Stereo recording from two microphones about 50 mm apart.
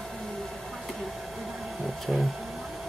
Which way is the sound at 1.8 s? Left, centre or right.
Centre.